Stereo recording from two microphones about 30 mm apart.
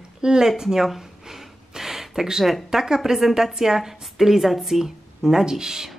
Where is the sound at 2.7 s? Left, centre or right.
Centre.